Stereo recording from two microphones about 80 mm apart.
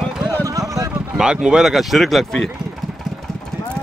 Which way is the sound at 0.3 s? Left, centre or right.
Right.